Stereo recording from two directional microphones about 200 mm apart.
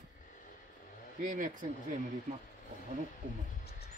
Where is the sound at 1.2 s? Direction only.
40° right (ahead or behind).